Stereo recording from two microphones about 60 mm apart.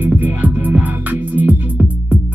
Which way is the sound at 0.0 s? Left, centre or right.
Right.